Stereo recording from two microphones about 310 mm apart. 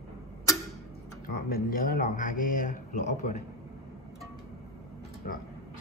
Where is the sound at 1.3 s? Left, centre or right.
Left.